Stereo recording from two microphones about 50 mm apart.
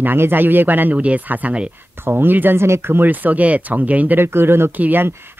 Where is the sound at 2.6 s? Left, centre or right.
Right.